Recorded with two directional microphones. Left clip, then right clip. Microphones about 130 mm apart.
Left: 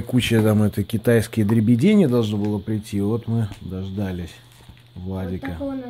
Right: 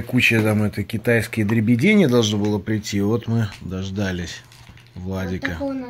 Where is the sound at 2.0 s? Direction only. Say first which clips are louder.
Right 2 dB; 15° left (ahead or behind).